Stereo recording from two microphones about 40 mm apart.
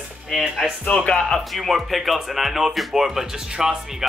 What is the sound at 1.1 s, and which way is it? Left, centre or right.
Speech, centre.